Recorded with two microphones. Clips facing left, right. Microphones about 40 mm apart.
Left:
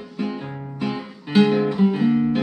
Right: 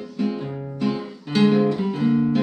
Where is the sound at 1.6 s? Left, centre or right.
Centre.